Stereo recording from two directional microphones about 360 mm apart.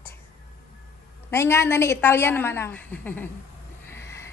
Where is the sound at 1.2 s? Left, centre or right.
Centre.